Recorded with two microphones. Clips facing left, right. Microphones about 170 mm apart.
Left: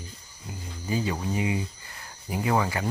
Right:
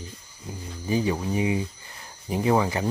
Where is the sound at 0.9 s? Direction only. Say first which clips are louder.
Right 4 dB; 15° right (ahead or behind).